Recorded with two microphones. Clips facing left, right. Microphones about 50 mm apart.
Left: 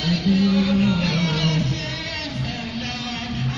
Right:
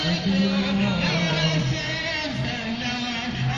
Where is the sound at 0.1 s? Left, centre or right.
Centre.